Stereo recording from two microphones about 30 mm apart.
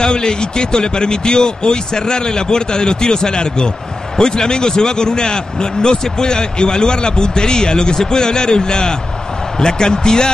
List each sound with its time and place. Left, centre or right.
0.0 s a man's voice: left